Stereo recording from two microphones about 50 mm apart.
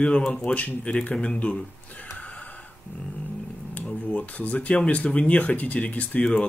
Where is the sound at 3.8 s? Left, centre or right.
Left.